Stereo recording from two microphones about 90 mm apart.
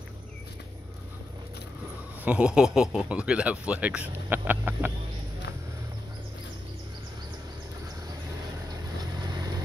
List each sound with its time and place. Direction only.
2.2 s speech: 10° right (ahead or behind)
9.2 s vehicle: 50° right (ahead or behind)